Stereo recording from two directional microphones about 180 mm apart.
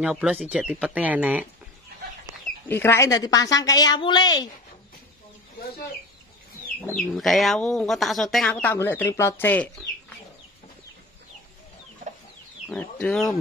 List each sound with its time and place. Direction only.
0.0 s speech: 5° right (ahead or behind)
2.7 s a woman's voice: 15° left (ahead or behind)
7.0 s speech: centre (ahead or behind)
12.6 s speech: 5° left (ahead or behind)